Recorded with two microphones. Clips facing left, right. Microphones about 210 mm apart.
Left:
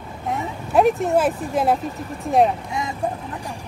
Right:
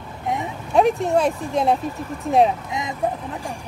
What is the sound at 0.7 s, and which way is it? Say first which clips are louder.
Speech: left 1 dB; centre (ahead or behind).